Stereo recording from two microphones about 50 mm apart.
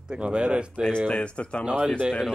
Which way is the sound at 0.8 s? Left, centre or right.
Centre.